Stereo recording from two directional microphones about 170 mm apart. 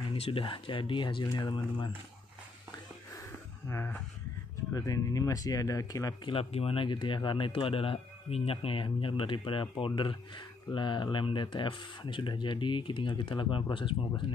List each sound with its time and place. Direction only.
0.1 s speech: 30° left (ahead or behind)
3.6 s speech: 15° left (ahead or behind)
6.3 s speech: 35° left (ahead or behind)